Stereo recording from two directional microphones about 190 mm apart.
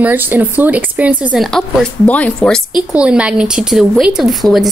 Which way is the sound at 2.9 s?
5° right (ahead or behind).